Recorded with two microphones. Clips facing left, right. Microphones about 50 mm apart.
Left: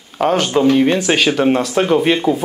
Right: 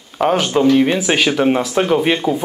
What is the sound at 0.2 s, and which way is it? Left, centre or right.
Speech, centre.